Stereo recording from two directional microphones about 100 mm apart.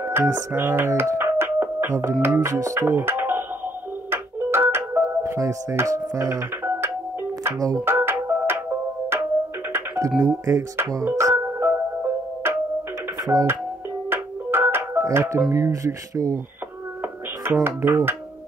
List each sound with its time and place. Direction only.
0.0 s speech: 25° right (ahead or behind)
2.2 s music: 25° right (ahead or behind)
5.0 s speech: 30° right (ahead or behind)
7.8 s music: 25° right (ahead or behind)
9.7 s speech: 30° right (ahead or behind)
11.1 s music: 30° right (ahead or behind)
13.3 s speech: 35° right (ahead or behind)
14.1 s music: 25° right (ahead or behind)
15.5 s speech: 30° right (ahead or behind)
17.5 s speech: 25° right (ahead or behind)